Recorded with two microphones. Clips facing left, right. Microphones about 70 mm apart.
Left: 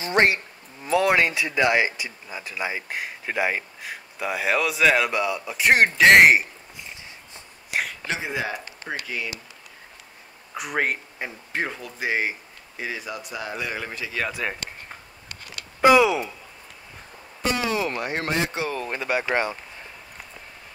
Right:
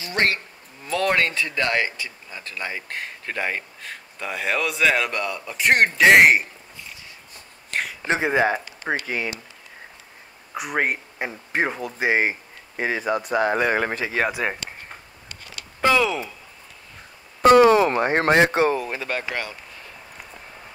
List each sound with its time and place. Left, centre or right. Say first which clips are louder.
0.0 s insect: left 3 dB; left
0.8 s speech: left 2 dB; centre
6.8 s walk: left 1 dB; left
7.7 s a sound: even; centre
8.3 s speech: right 8 dB; right
10.5 s speech: right 2 dB; centre
11.1 s speech: right 4 dB; right
14.0 s speech: right 5 dB; right
14.3 s speech: right 3 dB; centre
15.8 s speech: left 4 dB; centre
17.4 s a sound: right 12 dB; right
17.9 s speech: right 8 dB; right
18.8 s speech: right 1 dB; centre
19.2 s speech: left 5 dB; left